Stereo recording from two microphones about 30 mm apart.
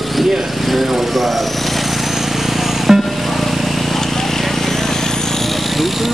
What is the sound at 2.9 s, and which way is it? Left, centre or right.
Music, centre.